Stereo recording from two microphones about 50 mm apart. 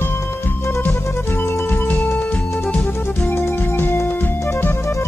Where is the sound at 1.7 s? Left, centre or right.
Left.